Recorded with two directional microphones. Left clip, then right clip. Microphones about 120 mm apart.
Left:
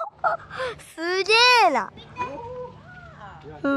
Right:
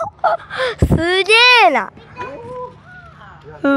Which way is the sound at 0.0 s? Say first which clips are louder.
Right 8 dB; 30° right (ahead or behind).